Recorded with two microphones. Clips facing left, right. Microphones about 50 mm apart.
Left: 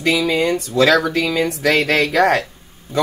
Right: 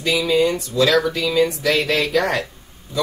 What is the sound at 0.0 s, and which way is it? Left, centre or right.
Speech, left.